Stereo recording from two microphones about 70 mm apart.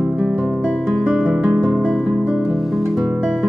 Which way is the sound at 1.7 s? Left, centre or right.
Centre.